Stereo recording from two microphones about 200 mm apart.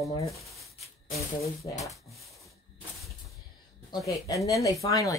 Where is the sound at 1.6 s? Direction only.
25° left (ahead or behind).